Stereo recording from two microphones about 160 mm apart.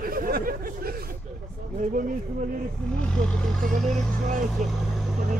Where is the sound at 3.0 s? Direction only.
5° left (ahead or behind).